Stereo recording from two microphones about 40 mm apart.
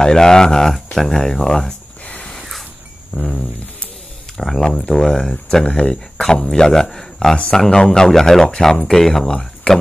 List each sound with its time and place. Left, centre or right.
0.0 s speech: centre
3.2 s speech: centre
6.5 s speech: centre